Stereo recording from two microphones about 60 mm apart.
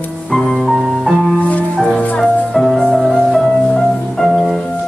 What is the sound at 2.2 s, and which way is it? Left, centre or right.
Music, centre.